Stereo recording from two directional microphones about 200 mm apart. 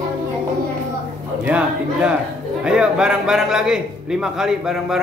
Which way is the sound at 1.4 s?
5° right (ahead or behind).